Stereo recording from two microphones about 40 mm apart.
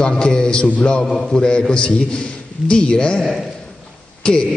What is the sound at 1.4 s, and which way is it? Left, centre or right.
A man's voice, left.